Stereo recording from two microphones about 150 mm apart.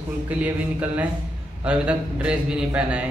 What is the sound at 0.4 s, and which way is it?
Speech, 10° right (ahead or behind).